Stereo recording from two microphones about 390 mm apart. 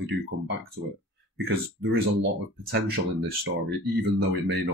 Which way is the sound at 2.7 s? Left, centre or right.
Right.